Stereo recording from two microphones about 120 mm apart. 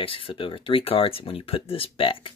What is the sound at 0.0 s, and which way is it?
Speech, 45° left (ahead or behind).